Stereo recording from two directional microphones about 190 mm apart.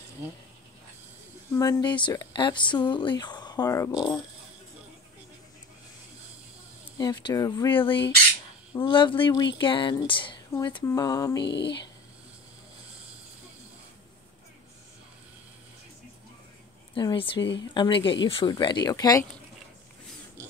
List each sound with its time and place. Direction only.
1.5 s speech: 20° left (ahead or behind)
7.0 s speech: 20° left (ahead or behind)
11.4 s speech: 65° left (ahead or behind)
16.9 s speech: 25° left (ahead or behind)
17.4 s speech: 70° left (ahead or behind)
17.7 s speech: 25° left (ahead or behind)